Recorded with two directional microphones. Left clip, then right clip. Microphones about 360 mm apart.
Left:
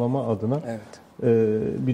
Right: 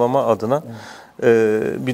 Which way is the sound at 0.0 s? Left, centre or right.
Centre.